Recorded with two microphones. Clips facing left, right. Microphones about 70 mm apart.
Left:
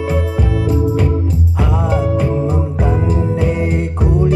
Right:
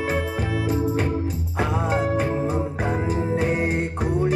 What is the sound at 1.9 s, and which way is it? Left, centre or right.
Music, right.